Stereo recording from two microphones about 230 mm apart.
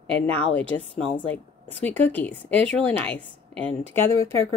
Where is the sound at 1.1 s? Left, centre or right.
Centre.